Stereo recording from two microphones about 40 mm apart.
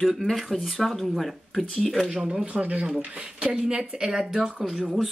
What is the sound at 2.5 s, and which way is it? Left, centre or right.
Speech, right.